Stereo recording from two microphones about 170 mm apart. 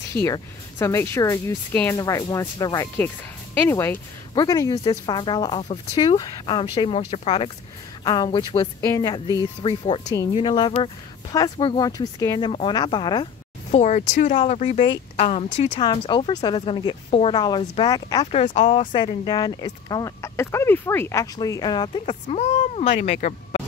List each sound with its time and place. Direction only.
0.1 s speech: 20° left (ahead or behind); by 7.5 s 35° left (ahead or behind)
8.0 s speech: 25° left (ahead or behind)
13.7 s speech: 40° left (ahead or behind)
15.8 s speech: 30° left (ahead or behind)
18.3 s speech: 45° left (ahead or behind)
18.9 s speech: 25° left (ahead or behind)
22.0 s speech: 40° left (ahead or behind)